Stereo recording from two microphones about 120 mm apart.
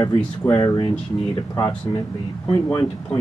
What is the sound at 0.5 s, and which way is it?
Speech, 40° left (ahead or behind).